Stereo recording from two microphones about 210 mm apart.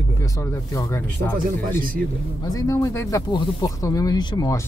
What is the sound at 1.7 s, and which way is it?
Speech, 40° right (ahead or behind).